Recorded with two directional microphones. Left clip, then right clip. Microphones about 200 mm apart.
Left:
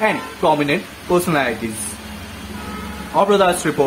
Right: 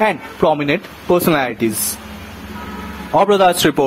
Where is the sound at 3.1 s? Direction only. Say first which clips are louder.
Right 3 dB; 50° right (ahead or behind).